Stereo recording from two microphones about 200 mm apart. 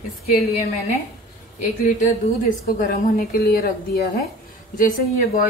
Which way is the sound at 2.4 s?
40° left (ahead or behind).